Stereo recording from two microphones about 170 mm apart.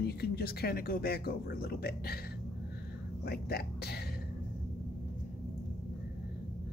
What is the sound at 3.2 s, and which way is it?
Speech, 65° left (ahead or behind).